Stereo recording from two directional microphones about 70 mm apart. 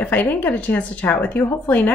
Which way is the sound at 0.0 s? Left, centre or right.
Left.